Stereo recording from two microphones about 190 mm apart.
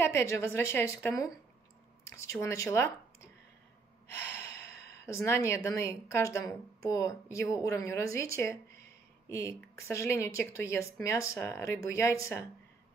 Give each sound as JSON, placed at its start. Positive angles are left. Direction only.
{"t": 0.0, "sound": "speech", "side_deg": 15}
{"t": 2.0, "sound": "a sound", "side_deg": 15}
{"t": 2.4, "sound": "speech", "side_deg": 15}